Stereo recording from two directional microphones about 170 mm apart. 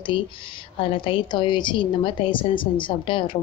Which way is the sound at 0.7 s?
30° left (ahead or behind).